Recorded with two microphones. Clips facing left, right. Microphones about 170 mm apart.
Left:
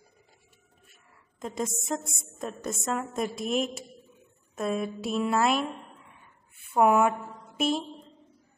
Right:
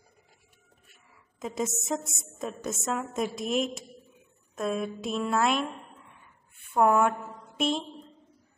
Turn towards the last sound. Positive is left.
turn(degrees=5)  # may be behind; listen again after turning